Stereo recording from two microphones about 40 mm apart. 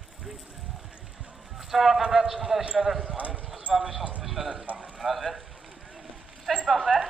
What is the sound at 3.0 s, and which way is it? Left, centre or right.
Clip-clop, right.